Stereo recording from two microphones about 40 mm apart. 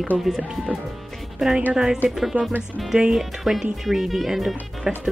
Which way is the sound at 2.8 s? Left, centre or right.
Centre.